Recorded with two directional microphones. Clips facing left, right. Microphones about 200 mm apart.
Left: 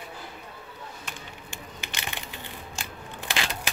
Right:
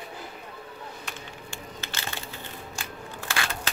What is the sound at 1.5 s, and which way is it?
Crushing, 15° left (ahead or behind).